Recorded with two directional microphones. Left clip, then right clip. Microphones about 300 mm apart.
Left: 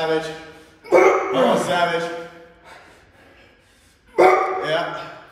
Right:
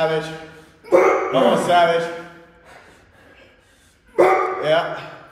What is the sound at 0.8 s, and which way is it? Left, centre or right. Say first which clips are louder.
Dog: left 1 dB; centre.